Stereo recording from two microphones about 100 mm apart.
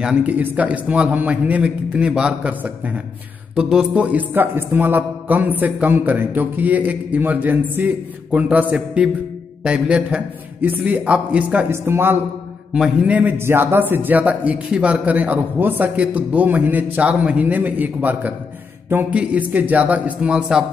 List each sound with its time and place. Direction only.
0.0 s a man's voice: 15° right (ahead or behind)
11.7 s a man's voice: 25° right (ahead or behind)
12.7 s a man's voice: 10° right (ahead or behind)